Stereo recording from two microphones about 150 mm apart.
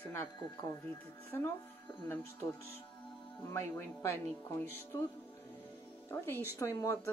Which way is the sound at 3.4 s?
15° left (ahead or behind).